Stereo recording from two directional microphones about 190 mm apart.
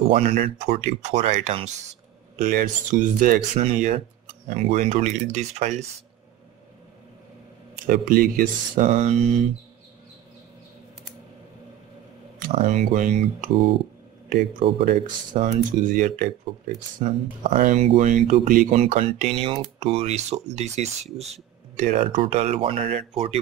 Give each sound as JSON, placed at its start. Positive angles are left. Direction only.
{"t": 0.3, "sound": "speech", "side_deg": -45}
{"t": 7.8, "sound": "speech", "side_deg": -50}
{"t": 12.5, "sound": "speech", "side_deg": -40}
{"t": 14.9, "sound": "speech", "side_deg": -45}
{"t": 22.2, "sound": "speech", "side_deg": -35}